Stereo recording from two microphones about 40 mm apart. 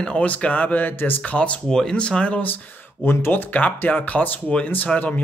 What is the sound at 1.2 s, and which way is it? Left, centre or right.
Speech, left.